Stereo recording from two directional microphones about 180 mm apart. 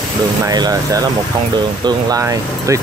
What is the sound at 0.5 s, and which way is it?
Speech, 20° right (ahead or behind).